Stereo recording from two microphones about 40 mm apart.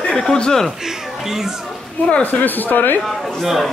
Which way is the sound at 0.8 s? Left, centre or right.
Centre.